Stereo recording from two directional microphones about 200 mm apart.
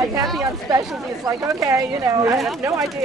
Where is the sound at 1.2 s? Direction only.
15° right (ahead or behind).